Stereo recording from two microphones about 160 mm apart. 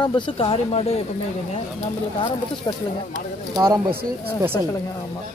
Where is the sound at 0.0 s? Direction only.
30° left (ahead or behind).